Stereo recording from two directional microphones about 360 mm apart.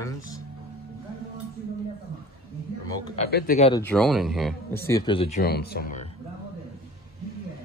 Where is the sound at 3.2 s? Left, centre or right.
Left.